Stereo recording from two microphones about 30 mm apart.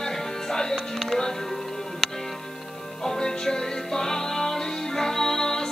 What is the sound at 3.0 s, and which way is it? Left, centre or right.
Music, centre.